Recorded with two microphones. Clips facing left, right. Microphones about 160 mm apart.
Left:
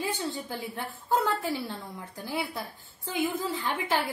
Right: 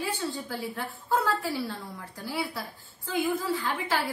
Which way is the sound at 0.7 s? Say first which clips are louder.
Left 1 dB; 20° left (ahead or behind).